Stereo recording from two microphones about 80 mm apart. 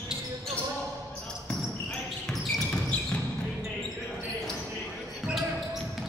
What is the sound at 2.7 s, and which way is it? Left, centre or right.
Basketball bounce, centre.